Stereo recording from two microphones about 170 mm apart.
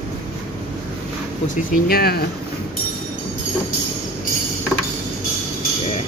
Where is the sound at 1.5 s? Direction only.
55° left (ahead or behind).